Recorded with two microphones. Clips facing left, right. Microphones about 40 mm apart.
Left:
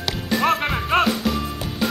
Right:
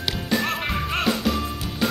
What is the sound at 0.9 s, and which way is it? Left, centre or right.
Music, left.